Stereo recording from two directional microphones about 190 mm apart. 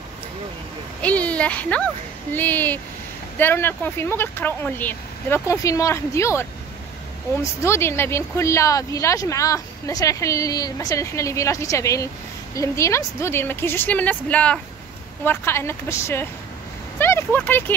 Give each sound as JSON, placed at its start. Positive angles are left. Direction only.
{"t": 1.0, "sound": "speech", "side_deg": 5}
{"t": 7.6, "sound": "speech", "side_deg": 15}